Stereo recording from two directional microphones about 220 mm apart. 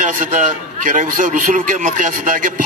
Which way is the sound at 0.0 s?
35° right (ahead or behind).